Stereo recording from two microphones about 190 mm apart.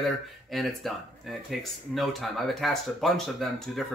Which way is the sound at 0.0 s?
Centre (ahead or behind).